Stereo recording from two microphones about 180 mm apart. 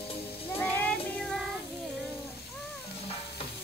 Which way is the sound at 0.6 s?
10° left (ahead or behind).